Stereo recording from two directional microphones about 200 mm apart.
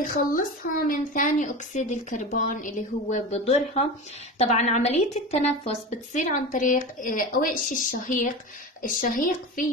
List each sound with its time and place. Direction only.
0.0 s a woman's voice: 40° left (ahead or behind)